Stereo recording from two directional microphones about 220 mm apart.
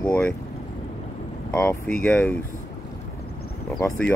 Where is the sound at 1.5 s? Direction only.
5° left (ahead or behind).